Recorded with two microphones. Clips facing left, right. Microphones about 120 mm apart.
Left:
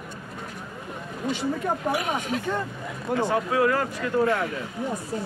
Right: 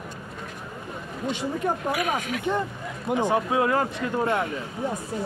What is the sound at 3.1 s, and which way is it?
Speech, 15° right (ahead or behind).